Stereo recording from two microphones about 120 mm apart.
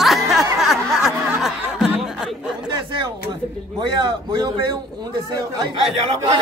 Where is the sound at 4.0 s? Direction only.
40° right (ahead or behind).